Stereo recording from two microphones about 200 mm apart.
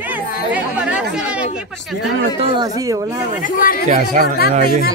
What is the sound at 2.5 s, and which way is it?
Speech, 20° right (ahead or behind).